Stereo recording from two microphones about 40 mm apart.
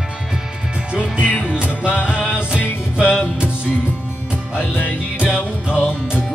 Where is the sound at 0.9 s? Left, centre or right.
Right.